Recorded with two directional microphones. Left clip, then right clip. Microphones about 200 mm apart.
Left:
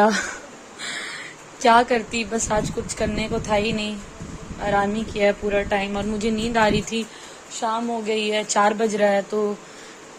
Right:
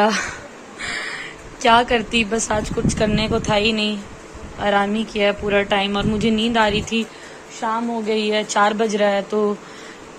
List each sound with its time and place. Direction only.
0.0 s a sound: centre (ahead or behind)
1.6 s a woman's voice: 10° left (ahead or behind)
7.6 s a woman's voice: 25° left (ahead or behind)
8.1 s speech: 10° left (ahead or behind)